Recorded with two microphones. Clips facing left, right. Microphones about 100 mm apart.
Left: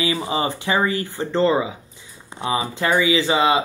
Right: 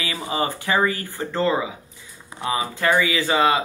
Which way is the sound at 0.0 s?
25° left (ahead or behind).